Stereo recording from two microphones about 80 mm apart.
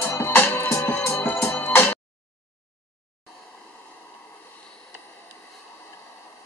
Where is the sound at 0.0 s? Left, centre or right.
Left.